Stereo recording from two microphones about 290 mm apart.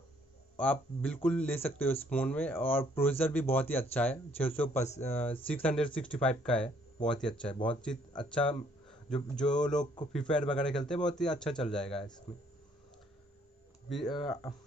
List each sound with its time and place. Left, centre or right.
0.6 s speech: centre
14.0 s speech: centre